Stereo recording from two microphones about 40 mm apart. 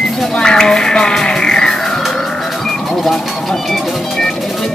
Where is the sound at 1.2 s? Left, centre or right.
Centre.